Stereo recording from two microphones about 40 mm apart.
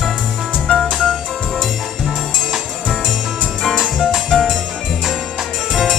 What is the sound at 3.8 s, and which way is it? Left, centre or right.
Music, centre.